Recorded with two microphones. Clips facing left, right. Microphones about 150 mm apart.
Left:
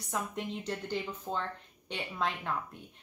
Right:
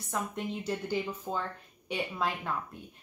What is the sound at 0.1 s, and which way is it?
A woman's voice, centre (ahead or behind).